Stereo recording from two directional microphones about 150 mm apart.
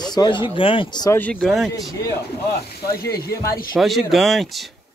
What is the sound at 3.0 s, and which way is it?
Speech, 90° left.